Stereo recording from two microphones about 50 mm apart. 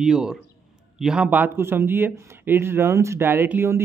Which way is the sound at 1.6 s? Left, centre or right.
Right.